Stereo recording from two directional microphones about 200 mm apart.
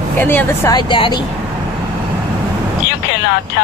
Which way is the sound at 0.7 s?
20° left (ahead or behind).